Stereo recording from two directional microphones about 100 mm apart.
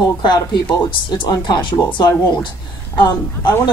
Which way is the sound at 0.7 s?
55° left (ahead or behind).